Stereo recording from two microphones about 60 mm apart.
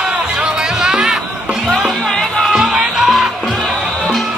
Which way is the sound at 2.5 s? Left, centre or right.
Centre.